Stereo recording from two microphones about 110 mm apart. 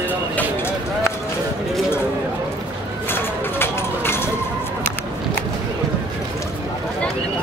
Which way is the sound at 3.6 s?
20° left (ahead or behind).